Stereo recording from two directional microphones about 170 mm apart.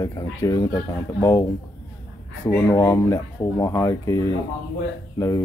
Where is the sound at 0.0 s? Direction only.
20° left (ahead or behind).